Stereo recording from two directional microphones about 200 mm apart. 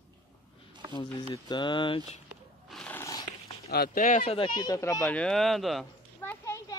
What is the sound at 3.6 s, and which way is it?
Speech, 50° left (ahead or behind).